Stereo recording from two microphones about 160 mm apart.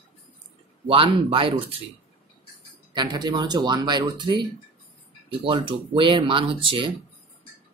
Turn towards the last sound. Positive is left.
turn(degrees=-30)  # may be behind; listen again after turning